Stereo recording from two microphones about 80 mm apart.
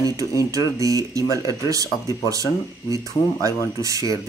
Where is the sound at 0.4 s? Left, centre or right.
Right.